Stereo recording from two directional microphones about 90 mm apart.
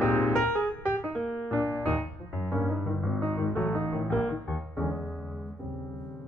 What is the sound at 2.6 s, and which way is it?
Music, 20° right (ahead or behind).